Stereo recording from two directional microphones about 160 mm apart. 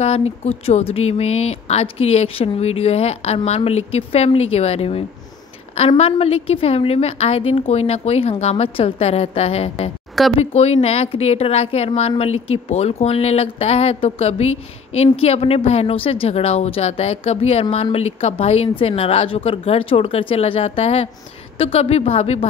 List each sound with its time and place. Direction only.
0.0 s speech: 40° left (ahead or behind)